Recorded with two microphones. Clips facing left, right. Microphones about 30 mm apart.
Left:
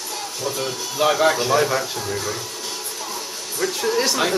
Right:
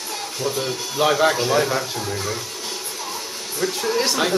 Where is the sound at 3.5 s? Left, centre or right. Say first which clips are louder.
Left 1 dB; centre.